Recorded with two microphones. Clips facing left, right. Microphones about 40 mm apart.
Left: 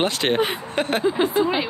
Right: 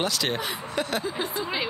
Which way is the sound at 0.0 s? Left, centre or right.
Left.